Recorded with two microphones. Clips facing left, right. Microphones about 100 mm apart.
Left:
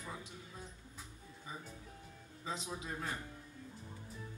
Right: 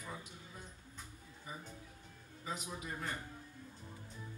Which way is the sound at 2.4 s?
25° left (ahead or behind).